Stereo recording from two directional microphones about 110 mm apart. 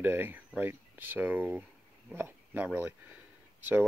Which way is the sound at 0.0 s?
15° right (ahead or behind).